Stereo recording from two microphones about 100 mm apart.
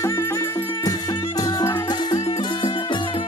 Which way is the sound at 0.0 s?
30° left (ahead or behind).